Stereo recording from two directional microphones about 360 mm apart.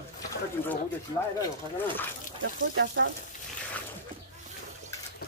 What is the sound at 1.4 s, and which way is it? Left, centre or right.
Speech, centre.